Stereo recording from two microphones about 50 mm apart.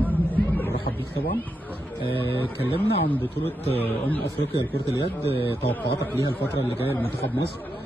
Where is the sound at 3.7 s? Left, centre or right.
Left.